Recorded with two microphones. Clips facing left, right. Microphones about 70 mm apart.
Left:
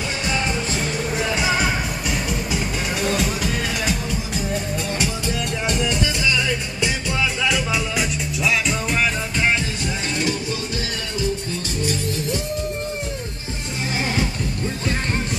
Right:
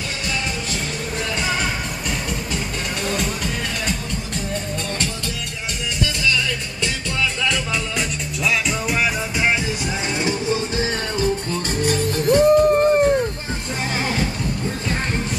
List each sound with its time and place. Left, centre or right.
1.4 s music: centre
8.6 s music: centre
11.8 s music: right